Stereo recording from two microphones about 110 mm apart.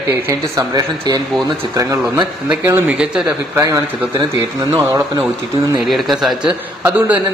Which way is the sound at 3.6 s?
30° right (ahead or behind).